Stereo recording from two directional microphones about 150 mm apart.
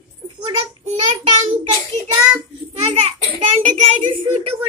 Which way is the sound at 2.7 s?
40° right (ahead or behind).